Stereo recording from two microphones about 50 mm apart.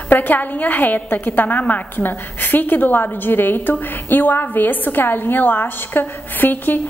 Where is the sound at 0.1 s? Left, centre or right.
Left.